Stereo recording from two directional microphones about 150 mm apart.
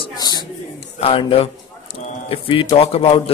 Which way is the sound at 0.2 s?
25° left (ahead or behind).